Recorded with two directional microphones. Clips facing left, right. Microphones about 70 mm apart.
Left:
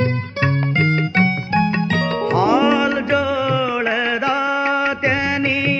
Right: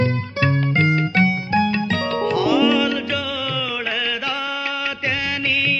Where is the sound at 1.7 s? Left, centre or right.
Left.